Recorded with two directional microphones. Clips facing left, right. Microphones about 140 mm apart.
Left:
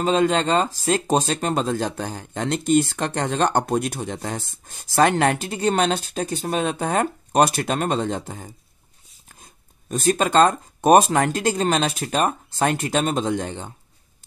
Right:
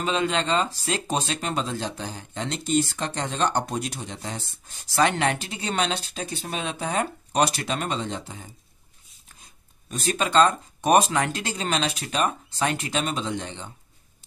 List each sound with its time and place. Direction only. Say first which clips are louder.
0.0 s speech: left 6 dB; 40° left (ahead or behind)